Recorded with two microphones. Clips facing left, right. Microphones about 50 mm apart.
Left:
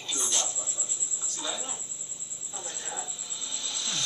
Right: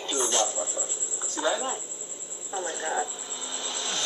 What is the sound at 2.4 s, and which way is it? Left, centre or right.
Vehicle, right.